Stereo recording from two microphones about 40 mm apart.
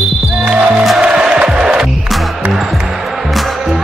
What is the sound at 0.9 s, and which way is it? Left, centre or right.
Music, centre.